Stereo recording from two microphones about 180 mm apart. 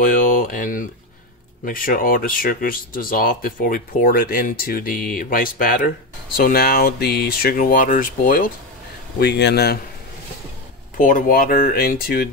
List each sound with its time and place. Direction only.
0.0 s speech: 45° left (ahead or behind)
9.2 s speech: 70° left (ahead or behind)
11.0 s speech: 50° left (ahead or behind)